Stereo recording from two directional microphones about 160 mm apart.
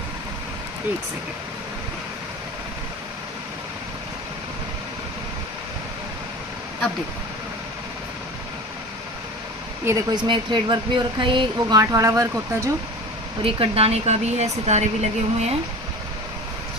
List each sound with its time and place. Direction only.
9.8 s speech: 20° right (ahead or behind)
13.4 s speech: 35° right (ahead or behind)